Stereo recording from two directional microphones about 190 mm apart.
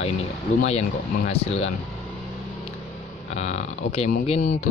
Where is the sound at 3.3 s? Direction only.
35° left (ahead or behind).